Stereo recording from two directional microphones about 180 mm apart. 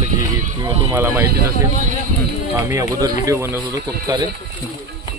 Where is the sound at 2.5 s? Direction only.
15° right (ahead or behind).